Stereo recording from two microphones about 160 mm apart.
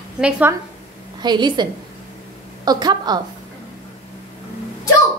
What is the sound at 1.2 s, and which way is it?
Speech, 30° right (ahead or behind).